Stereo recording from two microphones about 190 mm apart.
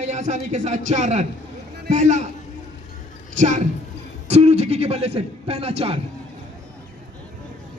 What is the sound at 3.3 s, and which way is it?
A woman's voice, 40° right (ahead or behind).